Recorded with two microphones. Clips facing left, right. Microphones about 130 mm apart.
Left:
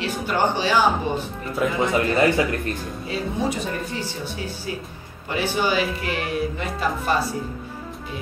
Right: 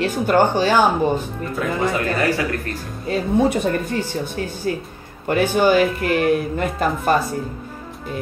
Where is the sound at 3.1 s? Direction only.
50° right (ahead or behind).